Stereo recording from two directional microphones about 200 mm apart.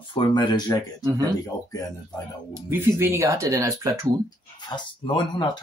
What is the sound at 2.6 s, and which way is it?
Speech, 15° right (ahead or behind).